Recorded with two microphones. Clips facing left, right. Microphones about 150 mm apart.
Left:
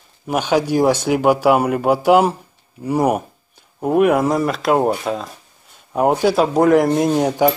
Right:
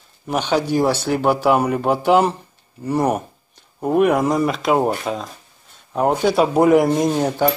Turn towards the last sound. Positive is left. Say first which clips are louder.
# left 3 dB
turn(degrees=10)  # may be behind; listen again after turning